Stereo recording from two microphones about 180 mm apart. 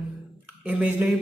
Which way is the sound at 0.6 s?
10° right (ahead or behind).